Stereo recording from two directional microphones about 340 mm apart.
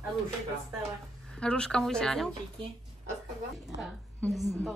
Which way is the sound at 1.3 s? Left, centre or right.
Centre.